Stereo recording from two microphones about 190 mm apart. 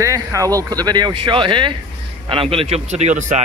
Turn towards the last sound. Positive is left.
turn(degrees=-40)  # may be behind; listen again after turning